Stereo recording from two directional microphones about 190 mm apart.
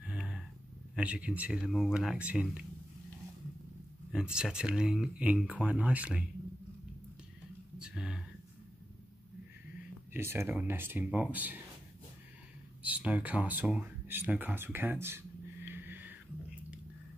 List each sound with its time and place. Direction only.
0.0 s a sound: 5° right (ahead or behind)
0.9 s speech: 5° right (ahead or behind)
4.1 s speech: 5° right (ahead or behind)
7.8 s a sound: 5° right (ahead or behind)
10.1 s speech: 10° right (ahead or behind)
12.8 s speech: 5° right (ahead or behind)